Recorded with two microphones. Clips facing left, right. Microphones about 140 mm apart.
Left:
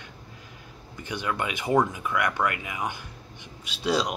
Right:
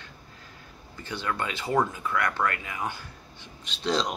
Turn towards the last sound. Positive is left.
turn(degrees=10)  # may be behind; listen again after turning